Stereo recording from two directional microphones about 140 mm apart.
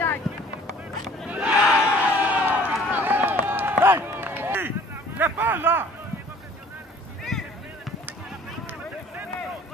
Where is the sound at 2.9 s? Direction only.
15° right (ahead or behind).